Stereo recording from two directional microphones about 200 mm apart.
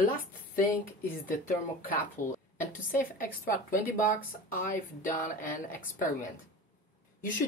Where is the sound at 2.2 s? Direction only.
40° left (ahead or behind).